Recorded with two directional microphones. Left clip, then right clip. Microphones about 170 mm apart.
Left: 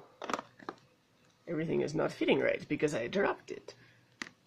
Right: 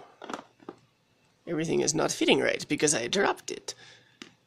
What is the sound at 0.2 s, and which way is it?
Biting, 15° left (ahead or behind).